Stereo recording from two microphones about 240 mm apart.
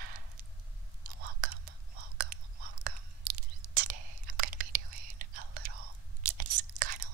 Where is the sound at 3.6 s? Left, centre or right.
Right.